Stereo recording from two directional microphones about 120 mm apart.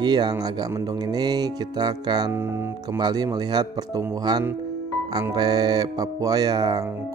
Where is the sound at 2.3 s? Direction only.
20° right (ahead or behind).